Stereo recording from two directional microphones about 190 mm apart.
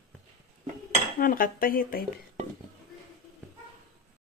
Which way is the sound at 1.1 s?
50° left (ahead or behind).